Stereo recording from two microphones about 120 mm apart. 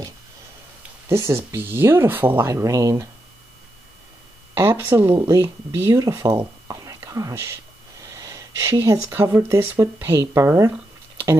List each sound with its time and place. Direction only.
1.0 s speech: 20° right (ahead or behind)
4.6 s speech: 20° right (ahead or behind)